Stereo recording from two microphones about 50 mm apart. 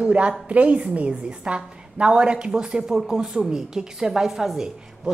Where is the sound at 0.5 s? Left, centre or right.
Right; by 5.1 s centre.